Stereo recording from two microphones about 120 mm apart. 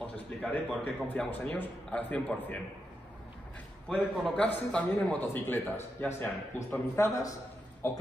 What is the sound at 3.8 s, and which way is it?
A man's voice, 5° left (ahead or behind).